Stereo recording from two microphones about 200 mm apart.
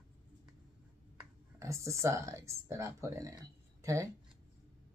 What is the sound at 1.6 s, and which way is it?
Speech, 15° right (ahead or behind).